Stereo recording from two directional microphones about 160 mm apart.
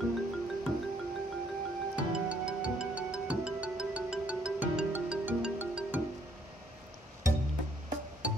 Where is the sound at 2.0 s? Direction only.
5° right (ahead or behind).